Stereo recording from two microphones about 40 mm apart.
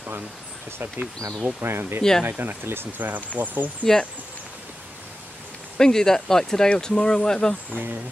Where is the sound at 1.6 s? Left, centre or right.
Right.